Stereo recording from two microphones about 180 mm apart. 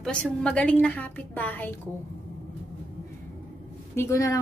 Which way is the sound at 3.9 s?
15° left (ahead or behind).